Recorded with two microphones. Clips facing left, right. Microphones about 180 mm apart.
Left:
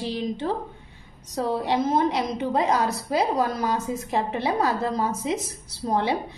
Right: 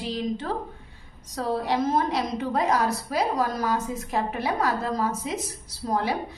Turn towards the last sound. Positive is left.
turn(degrees=25)  # may be behind; listen again after turning